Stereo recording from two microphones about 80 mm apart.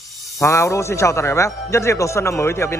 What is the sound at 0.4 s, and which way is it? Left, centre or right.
A man's voice, left.